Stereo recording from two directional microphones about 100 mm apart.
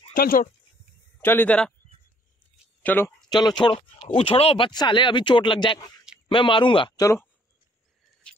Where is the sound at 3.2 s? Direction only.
45° left (ahead or behind).